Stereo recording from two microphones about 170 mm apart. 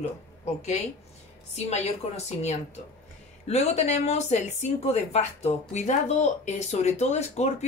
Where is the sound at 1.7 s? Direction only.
40° left (ahead or behind).